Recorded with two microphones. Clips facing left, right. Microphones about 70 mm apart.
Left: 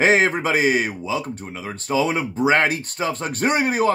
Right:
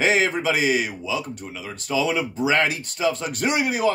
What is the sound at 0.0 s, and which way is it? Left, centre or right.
Speech, left.